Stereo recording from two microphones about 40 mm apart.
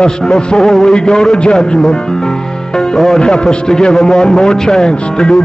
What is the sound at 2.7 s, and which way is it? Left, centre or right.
Music, centre.